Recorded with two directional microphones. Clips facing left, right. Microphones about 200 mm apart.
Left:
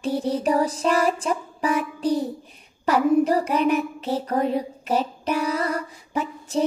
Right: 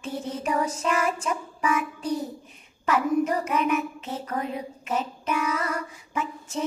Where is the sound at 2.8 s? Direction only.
35° left (ahead or behind).